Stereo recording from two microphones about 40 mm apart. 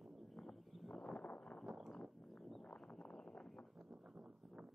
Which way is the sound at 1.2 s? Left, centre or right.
Left.